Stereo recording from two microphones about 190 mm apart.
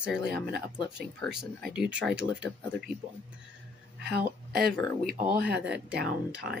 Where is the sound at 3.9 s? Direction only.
55° right (ahead or behind).